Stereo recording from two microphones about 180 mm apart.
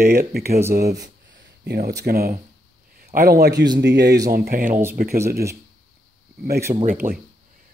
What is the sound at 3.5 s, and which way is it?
Speech, 20° right (ahead or behind).